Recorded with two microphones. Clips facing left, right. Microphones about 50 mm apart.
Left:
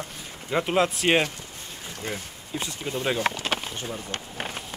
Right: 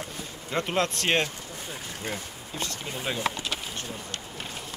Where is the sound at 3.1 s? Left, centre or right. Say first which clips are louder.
Left 4 dB; left.